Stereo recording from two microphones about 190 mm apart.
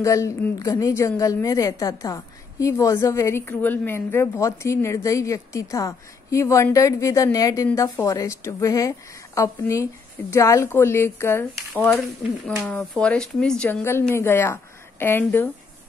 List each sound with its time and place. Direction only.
0.0 s a woman's voice: 15° left (ahead or behind)